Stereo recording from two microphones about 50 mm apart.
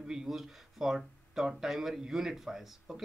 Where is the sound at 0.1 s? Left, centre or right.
Centre.